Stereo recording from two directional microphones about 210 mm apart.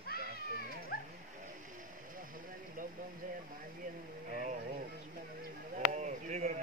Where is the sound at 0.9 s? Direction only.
45° left (ahead or behind).